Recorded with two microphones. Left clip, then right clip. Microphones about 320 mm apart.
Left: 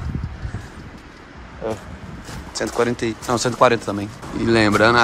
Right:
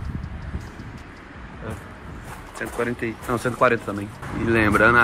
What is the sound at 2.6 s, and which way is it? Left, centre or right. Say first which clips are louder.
Speech: left 6 dB; centre.